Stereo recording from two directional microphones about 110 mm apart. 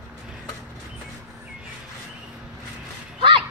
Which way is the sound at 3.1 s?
50° right (ahead or behind).